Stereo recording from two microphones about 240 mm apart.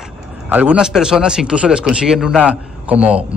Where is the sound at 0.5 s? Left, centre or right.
Centre.